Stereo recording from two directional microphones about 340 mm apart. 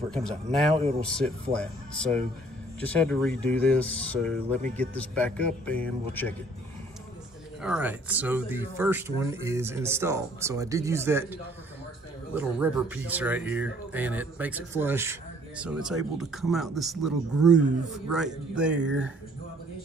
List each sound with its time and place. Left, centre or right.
0.1 s speech: centre
0.7 s speech: centre
1.0 s speech: centre
7.6 s speech: centre
12.4 s speech: centre